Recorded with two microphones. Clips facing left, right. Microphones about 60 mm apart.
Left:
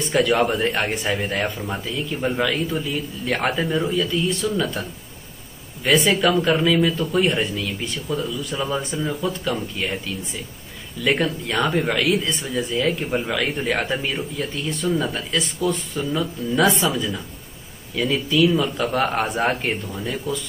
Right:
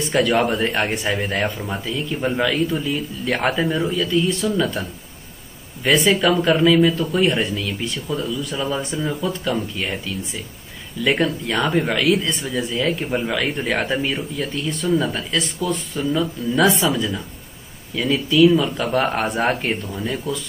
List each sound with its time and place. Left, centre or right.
0.0 s speech: centre
5.9 s speech: centre